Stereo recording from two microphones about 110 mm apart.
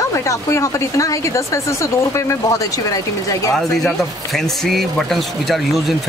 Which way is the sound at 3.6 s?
5° left (ahead or behind).